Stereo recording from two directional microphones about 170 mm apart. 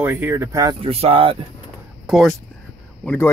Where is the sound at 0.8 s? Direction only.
35° right (ahead or behind).